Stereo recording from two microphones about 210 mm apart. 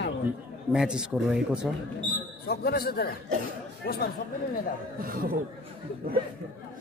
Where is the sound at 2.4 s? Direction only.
50° left (ahead or behind).